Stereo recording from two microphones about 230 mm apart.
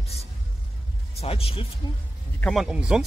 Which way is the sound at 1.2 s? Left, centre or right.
Left.